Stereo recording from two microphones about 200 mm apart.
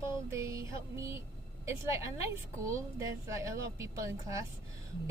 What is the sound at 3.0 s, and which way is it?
Speech, 15° right (ahead or behind).